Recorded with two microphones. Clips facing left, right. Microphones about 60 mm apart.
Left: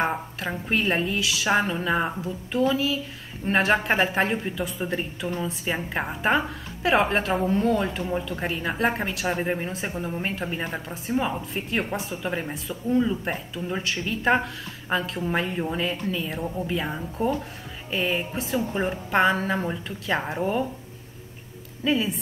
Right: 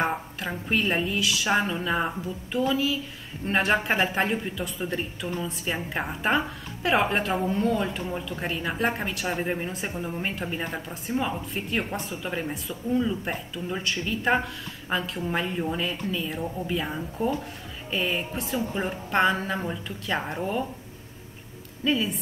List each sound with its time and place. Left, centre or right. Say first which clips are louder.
0.1 s speech: left 1 dB; centre
21.8 s speech: left 1 dB; centre